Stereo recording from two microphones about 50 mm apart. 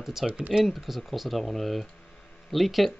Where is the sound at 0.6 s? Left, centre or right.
Centre.